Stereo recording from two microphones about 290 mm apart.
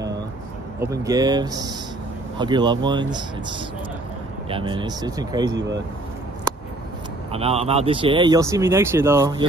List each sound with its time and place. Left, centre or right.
0.9 s speech: centre
7.3 s speech: centre